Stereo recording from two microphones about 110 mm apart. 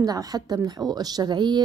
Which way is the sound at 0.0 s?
35° right (ahead or behind).